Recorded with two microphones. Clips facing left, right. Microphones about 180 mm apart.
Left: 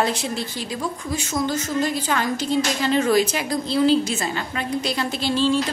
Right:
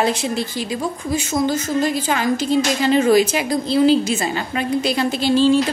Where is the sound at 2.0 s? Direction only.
5° right (ahead or behind).